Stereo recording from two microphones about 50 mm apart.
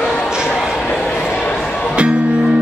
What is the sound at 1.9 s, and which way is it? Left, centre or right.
Music, right.